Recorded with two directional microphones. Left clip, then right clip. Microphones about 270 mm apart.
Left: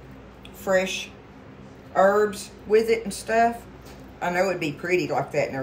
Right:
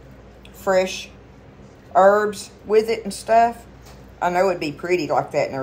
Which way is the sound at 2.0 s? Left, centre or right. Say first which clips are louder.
Right 5 dB; centre.